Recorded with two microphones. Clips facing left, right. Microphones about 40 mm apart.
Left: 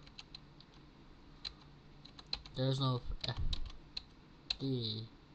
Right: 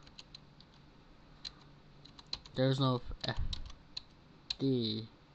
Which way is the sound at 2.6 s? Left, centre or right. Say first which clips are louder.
Right 5 dB; right.